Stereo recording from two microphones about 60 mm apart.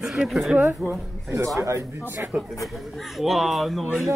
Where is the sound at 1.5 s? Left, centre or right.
Right.